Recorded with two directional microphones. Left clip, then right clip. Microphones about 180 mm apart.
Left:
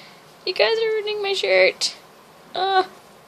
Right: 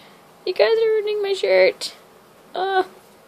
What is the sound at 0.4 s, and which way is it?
Speech, 20° right (ahead or behind).